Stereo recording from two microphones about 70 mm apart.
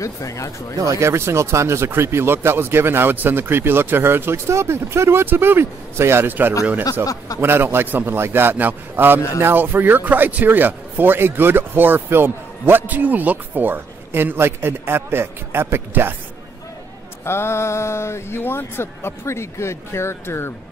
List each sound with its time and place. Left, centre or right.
0.0 s speech: left
0.7 s a man's voice: right
17.2 s speech: left